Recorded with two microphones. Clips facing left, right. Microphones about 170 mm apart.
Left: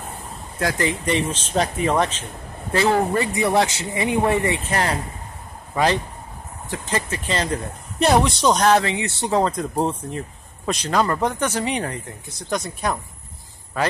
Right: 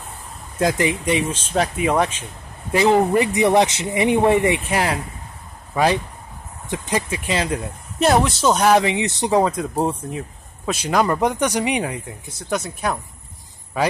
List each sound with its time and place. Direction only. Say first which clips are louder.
0.6 s speech: right 3 dB; 15° right (ahead or behind)
6.7 s speech: right 2 dB; 15° right (ahead or behind)